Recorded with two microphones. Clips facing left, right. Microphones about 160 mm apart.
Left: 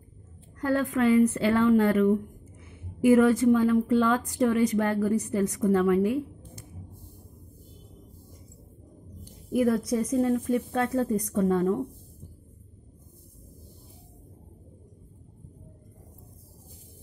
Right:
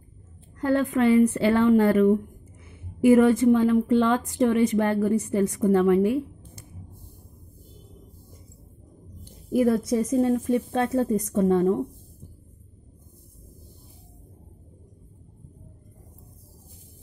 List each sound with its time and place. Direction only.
0.6 s a woman's voice: 25° right (ahead or behind)
9.2 s a woman's voice: 30° right (ahead or behind)